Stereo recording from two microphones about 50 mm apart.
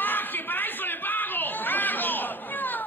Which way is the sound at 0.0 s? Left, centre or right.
Left.